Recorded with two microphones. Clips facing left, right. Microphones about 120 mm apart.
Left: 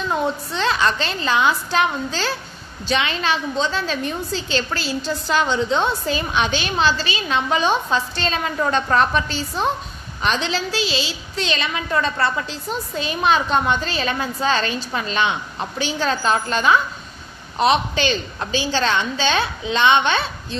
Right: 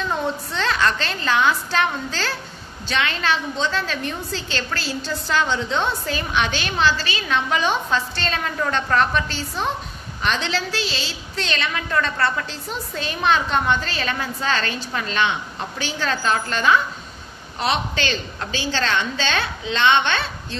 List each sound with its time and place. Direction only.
0.6 s a woman's voice: 20° left (ahead or behind)